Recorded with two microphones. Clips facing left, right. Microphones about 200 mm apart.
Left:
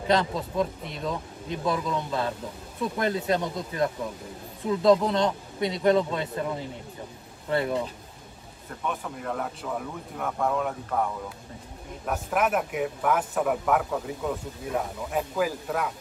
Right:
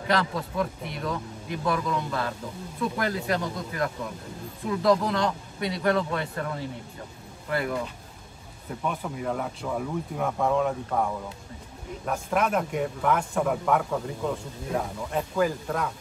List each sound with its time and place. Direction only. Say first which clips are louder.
0.1 s speech: left 2 dB; 20° left (ahead or behind)
8.8 s speech: right 2 dB; 5° right (ahead or behind)
12.1 s speech: even; 5° left (ahead or behind)